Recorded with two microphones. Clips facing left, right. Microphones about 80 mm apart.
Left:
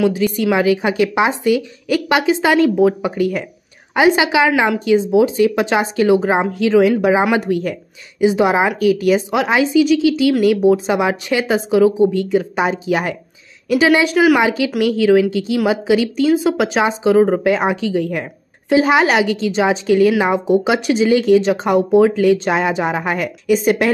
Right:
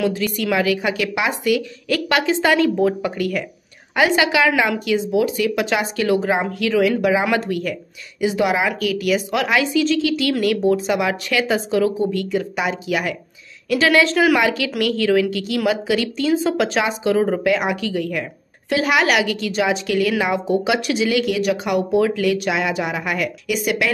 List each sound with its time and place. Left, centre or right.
0.0 s a woman's voice: centre